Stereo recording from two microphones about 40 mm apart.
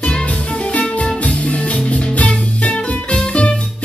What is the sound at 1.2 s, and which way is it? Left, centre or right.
Music, left.